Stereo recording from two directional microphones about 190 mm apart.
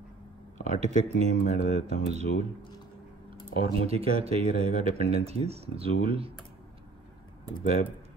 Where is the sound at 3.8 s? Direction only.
30° right (ahead or behind).